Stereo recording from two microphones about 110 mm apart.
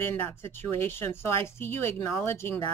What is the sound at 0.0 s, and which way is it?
Speech, 20° left (ahead or behind).